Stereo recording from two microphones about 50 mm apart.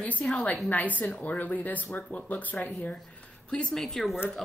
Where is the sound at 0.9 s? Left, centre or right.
Left.